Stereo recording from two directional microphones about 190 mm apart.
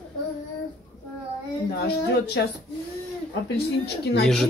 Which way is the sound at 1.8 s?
60° left (ahead or behind).